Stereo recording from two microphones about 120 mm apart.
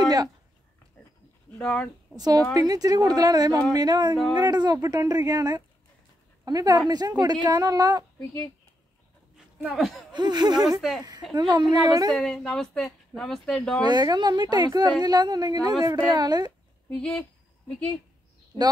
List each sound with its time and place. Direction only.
0.0 s a sound: 35° right (ahead or behind)
1.6 s speech: 10° left (ahead or behind)
2.1 s a woman's voice: 35° right (ahead or behind)
9.8 s speech: centre (ahead or behind)
10.1 s a woman's voice: 35° right (ahead or behind)
12.1 s speech: 5° left (ahead or behind)
13.8 s a woman's voice: 35° right (ahead or behind)
16.9 s speech: 10° left (ahead or behind)